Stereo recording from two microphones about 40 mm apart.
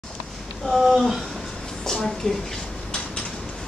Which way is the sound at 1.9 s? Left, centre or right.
Centre.